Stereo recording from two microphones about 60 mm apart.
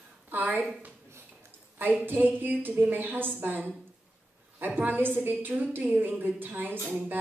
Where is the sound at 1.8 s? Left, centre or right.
Right.